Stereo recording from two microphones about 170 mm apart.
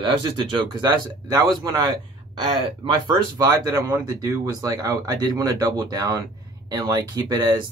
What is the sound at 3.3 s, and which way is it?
Speech, 20° right (ahead or behind).